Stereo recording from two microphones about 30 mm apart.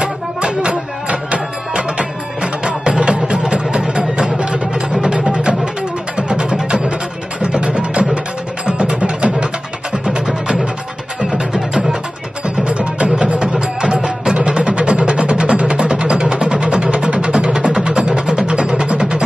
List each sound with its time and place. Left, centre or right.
0.0 s music: right
3.5 s vehicle: right
5.3 s music: right
12.4 s music: right
13.4 s music: right